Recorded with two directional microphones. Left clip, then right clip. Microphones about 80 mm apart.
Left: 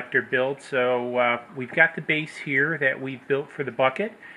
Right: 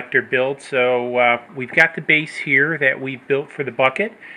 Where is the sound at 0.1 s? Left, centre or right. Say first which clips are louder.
Right 5 dB; right.